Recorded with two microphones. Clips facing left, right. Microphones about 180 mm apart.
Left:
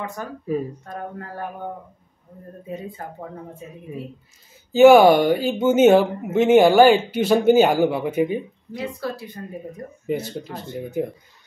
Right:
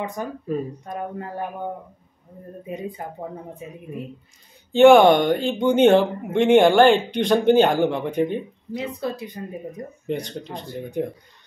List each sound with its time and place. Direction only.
0.0 s speech: 20° right (ahead or behind)
2.6 s speech: 15° right (ahead or behind)
4.7 s speech: 5° left (ahead or behind)
8.7 s speech: 20° right (ahead or behind)
10.0 s speech: 5° left (ahead or behind)